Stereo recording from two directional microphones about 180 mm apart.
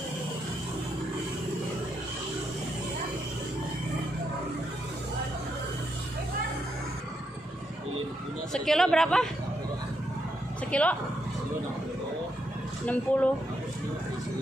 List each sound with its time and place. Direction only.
8.5 s speech: 5° left (ahead or behind)
10.7 s speech: 5° left (ahead or behind)
12.8 s speech: 10° left (ahead or behind)